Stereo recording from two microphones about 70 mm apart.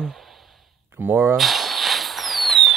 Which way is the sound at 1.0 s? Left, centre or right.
Right.